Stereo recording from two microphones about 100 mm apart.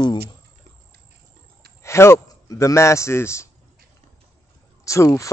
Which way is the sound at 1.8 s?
25° left (ahead or behind).